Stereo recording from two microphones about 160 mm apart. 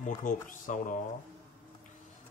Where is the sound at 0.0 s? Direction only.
55° left (ahead or behind).